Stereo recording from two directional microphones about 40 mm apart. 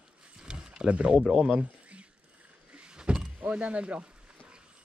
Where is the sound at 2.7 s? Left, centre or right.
Right.